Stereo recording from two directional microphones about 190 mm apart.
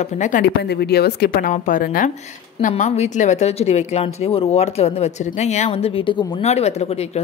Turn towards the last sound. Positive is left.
turn(degrees=35)  # may be behind; listen again after turning